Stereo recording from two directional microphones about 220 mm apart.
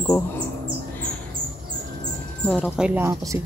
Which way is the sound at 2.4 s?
5° left (ahead or behind).